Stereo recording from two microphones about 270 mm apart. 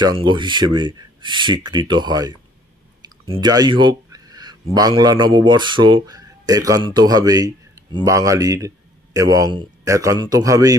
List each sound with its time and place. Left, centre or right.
0.0 s speech: centre
3.0 s a sound: centre
4.7 s speech: centre